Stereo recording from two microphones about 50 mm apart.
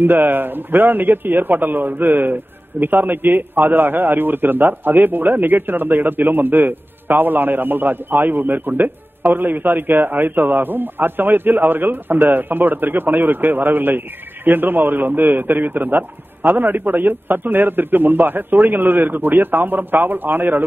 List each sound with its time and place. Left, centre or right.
0.0 s a man's voice: right